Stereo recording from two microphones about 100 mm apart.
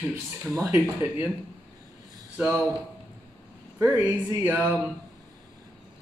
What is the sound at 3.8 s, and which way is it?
Speech, 25° right (ahead or behind).